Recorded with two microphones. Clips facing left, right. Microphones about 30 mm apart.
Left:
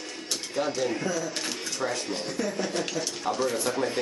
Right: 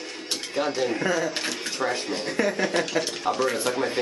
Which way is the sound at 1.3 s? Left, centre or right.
Right.